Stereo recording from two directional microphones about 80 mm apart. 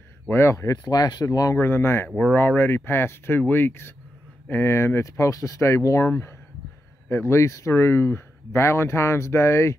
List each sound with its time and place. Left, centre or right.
0.3 s speech: left
1.6 s speech: left
2.0 s speech: centre
2.3 s speech: left